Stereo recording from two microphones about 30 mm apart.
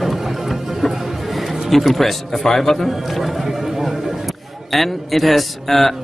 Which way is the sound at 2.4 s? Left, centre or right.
Centre.